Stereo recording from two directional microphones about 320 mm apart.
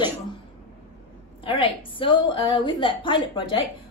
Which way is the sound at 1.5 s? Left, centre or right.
Centre.